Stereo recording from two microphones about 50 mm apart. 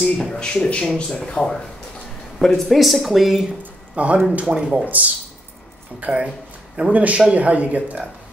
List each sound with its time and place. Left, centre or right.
0.0 s speech: centre
3.9 s speech: right
4.8 s speech: right